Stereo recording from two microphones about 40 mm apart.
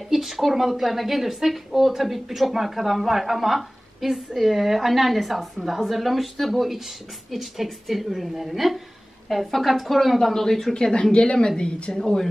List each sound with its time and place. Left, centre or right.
0.1 s speech: centre
10.7 s speech: left
12.0 s speech: centre